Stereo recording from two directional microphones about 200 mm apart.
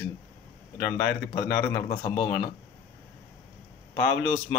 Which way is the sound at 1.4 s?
10° left (ahead or behind).